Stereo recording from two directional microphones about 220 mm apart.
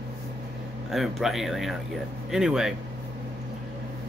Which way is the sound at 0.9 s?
Centre (ahead or behind).